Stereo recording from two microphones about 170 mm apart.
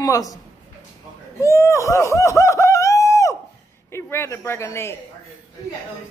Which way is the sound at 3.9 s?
15° left (ahead or behind).